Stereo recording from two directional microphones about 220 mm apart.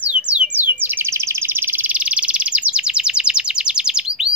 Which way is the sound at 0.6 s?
10° right (ahead or behind).